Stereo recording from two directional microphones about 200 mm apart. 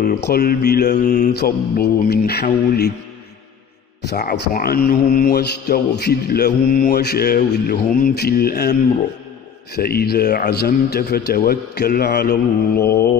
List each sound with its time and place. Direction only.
0.0 s a man's voice: 50° left (ahead or behind)
0.9 s mantra: 35° left (ahead or behind)
1.3 s a man's voice: 55° left (ahead or behind)
4.0 s speech: 55° left (ahead or behind)
4.6 s a man's voice: 45° left (ahead or behind)
9.8 s a man's voice: 50° left (ahead or behind)